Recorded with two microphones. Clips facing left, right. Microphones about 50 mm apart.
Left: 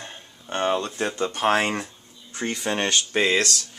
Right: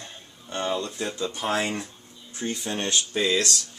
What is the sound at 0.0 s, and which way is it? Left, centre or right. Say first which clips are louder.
Speech: left 3 dB; left.